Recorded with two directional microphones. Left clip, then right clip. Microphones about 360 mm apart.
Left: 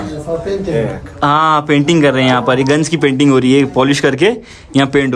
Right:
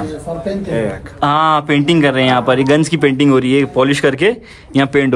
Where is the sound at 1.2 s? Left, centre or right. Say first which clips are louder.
Left 1 dB; centre.